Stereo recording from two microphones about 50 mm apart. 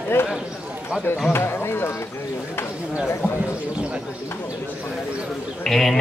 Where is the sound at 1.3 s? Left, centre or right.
Left.